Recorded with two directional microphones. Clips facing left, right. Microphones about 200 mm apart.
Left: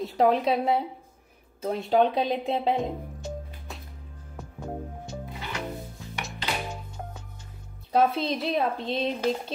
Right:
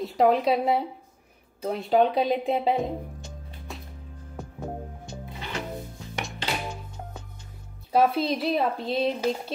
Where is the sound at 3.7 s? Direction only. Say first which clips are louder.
Right 2 dB; centre (ahead or behind).